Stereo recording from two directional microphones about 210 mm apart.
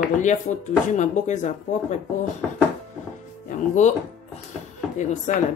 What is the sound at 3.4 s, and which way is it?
Music, 35° left (ahead or behind).